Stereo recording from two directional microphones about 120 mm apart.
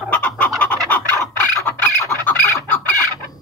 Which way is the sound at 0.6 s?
10° left (ahead or behind).